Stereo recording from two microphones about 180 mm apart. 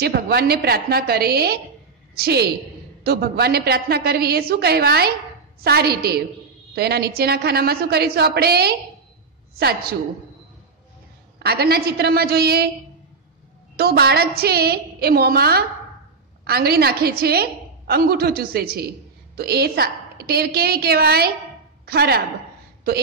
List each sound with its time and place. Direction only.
0.0 s a woman's voice: 60° right (ahead or behind)
11.3 s a woman's voice: 60° right (ahead or behind)
13.7 s a woman's voice: 60° right (ahead or behind)